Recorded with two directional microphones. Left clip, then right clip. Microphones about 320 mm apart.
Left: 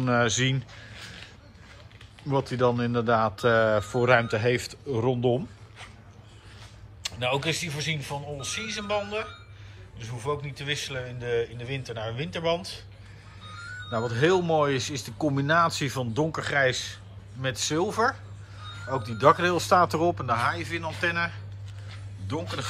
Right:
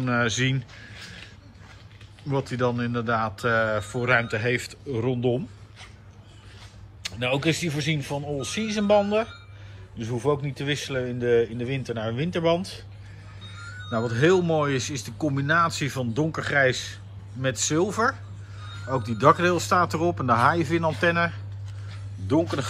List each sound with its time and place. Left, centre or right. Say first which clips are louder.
0.0 s speech: even; centre
2.2 s speech: left 1 dB; centre
7.0 s speech: right 1 dB; centre